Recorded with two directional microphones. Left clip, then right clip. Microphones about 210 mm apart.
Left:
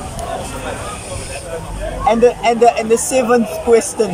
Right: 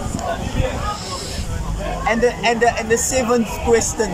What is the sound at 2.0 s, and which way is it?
Speech, 15° left (ahead or behind).